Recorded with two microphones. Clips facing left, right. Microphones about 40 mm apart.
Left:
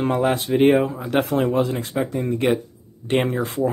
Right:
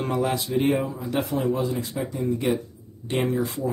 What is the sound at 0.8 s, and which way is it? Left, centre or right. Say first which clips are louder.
A man's voice: left 5 dB; left.